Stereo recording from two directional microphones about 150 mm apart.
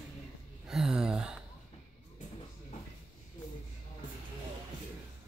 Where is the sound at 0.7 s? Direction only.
5° right (ahead or behind).